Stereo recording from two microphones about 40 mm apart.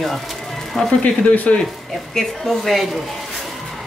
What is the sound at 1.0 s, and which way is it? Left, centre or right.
Speech, left.